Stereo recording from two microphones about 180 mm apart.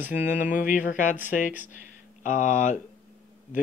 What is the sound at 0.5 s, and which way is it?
Speech, 45° left (ahead or behind).